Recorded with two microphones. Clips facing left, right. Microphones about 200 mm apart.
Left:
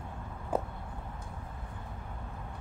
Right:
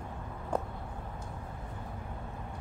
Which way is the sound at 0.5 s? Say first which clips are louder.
Left 1 dB; 5° left (ahead or behind).